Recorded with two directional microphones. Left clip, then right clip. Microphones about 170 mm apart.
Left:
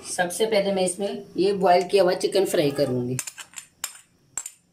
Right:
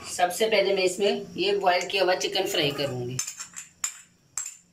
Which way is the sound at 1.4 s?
90° left.